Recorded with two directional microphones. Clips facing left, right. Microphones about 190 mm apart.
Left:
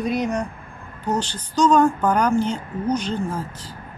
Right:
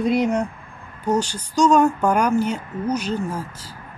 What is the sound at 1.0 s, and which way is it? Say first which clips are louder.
Speech: right 3 dB; 10° right (ahead or behind).